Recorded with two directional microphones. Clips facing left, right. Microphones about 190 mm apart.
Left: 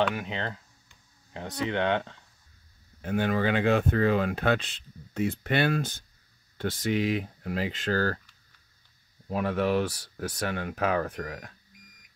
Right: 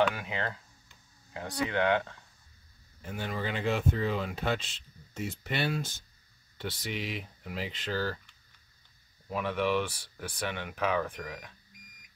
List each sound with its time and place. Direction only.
0.1 s speech: 20° left (ahead or behind)
3.0 s speech: 65° left (ahead or behind); by 8.2 s 45° left (ahead or behind)
9.3 s speech: 40° left (ahead or behind)